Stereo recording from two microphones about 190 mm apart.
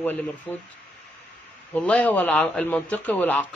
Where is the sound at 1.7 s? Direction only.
5° left (ahead or behind).